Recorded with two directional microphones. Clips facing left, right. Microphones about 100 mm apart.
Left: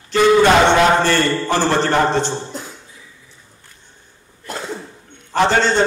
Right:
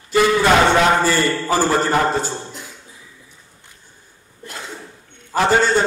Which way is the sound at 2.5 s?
35° left (ahead or behind).